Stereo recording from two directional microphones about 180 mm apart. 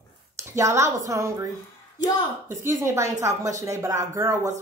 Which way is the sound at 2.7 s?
15° right (ahead or behind).